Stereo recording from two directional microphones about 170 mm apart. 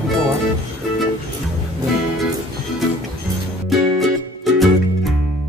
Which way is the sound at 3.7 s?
Centre (ahead or behind).